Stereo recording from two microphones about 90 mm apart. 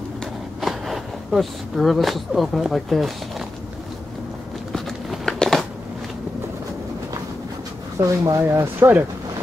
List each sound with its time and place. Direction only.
0.6 s speech: centre (ahead or behind)
4.7 s biting: centre (ahead or behind)
8.0 s speech: 35° right (ahead or behind)